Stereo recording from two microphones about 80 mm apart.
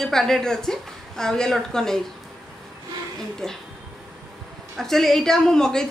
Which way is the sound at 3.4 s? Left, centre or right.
Centre.